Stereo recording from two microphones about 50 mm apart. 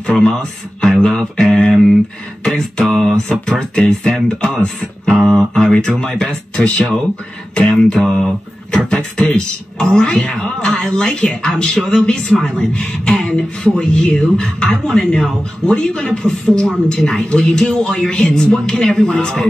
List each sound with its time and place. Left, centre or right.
0.0 s speech: centre
5.3 s a sound: centre
6.0 s speech: centre